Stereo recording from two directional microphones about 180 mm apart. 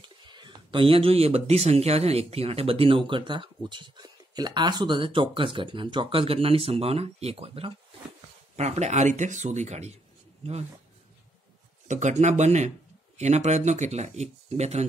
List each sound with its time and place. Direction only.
0.0 s speech: 25° right (ahead or behind)
11.9 s speech: 40° right (ahead or behind)